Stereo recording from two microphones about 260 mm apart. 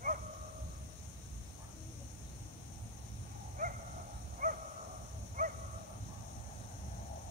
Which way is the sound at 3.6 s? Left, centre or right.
Right.